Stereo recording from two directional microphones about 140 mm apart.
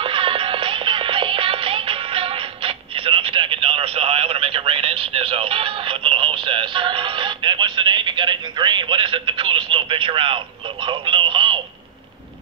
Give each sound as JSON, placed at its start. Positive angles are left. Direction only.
{"t": 0.0, "sound": "music", "side_deg": -40}